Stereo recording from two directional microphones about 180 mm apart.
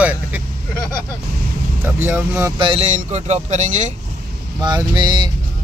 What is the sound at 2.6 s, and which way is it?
Speech, 35° right (ahead or behind).